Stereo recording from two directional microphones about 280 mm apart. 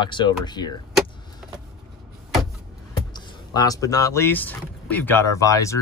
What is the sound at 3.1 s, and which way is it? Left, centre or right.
Speech, centre.